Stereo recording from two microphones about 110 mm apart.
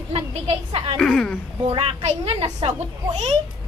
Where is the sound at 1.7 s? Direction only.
60° right (ahead or behind).